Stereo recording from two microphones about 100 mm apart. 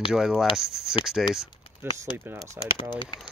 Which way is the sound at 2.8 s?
55° left (ahead or behind).